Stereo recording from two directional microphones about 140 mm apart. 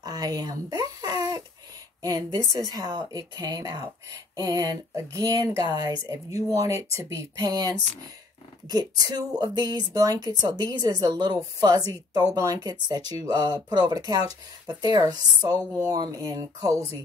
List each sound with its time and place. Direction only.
0.0 s a sound: 25° right (ahead or behind)
2.0 s a woman's voice: 30° right (ahead or behind)
15.5 s speech: 15° left (ahead or behind)
15.9 s a woman's voice: 25° right (ahead or behind)